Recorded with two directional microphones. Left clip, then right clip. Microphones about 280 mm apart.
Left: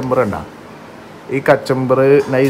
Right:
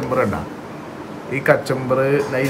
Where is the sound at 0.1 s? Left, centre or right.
Centre.